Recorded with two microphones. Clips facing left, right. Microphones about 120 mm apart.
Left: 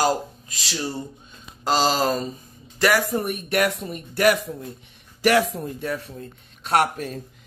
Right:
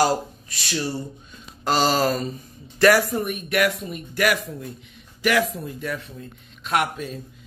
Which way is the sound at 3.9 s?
40° left (ahead or behind).